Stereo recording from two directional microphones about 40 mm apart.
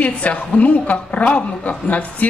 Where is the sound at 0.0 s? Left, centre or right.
Left.